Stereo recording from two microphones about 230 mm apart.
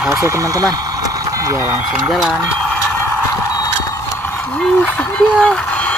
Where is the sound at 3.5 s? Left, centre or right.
Centre.